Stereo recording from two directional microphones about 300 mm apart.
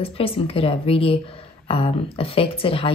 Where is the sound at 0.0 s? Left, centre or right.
Centre.